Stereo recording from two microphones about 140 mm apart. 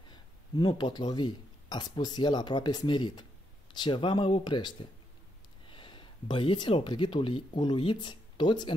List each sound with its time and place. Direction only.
0.1 s speech: 30° left (ahead or behind)